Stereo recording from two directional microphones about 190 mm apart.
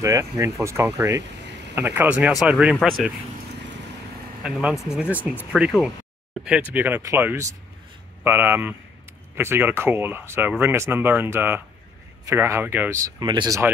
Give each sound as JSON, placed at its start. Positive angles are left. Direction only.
{"t": 0.0, "sound": "speech", "side_deg": -15}
{"t": 4.4, "sound": "speech", "side_deg": -5}